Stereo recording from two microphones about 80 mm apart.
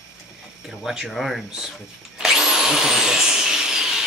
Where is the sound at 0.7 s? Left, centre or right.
Centre.